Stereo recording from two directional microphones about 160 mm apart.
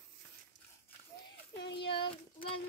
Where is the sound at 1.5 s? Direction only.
90° left.